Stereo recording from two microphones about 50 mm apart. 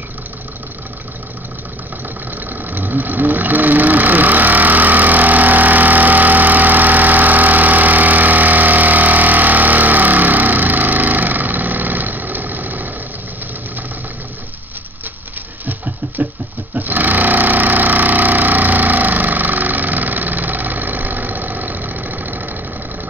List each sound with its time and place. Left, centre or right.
2.5 s engine: right
15.6 s a sound: right
16.7 s sewing machine: right